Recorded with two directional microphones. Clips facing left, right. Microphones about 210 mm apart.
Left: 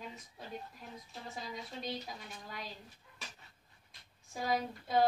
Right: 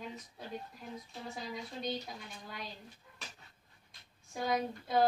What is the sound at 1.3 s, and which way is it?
Speech, centre (ahead or behind).